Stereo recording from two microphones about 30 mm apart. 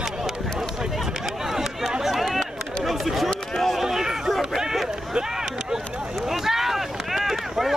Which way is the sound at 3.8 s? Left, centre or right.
Centre.